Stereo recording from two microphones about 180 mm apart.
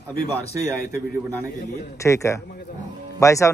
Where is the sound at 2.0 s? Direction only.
15° left (ahead or behind).